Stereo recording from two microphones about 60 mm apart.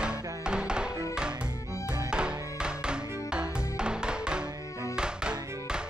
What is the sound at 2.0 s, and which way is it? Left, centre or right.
Music, centre.